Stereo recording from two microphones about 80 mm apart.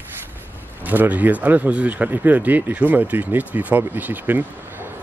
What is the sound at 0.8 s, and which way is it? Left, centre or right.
Speech, right.